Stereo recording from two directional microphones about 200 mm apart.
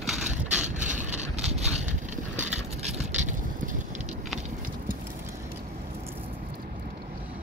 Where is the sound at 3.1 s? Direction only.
40° right (ahead or behind).